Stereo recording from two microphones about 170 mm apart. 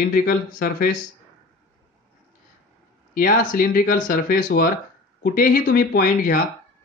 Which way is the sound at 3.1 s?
55° left (ahead or behind).